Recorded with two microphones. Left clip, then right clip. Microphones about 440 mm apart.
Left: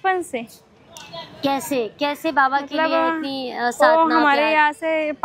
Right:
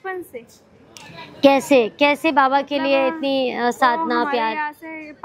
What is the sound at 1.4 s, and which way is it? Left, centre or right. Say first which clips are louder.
A woman's voice: right 8 dB; right.